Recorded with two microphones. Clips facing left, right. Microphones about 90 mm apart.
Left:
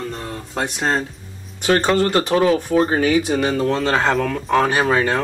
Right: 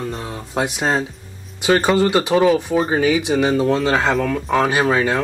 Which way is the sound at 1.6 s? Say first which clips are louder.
Right 1 dB; 5° right (ahead or behind).